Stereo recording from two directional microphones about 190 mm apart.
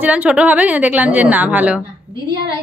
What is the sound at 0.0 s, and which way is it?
A woman's voice, 5° right (ahead or behind).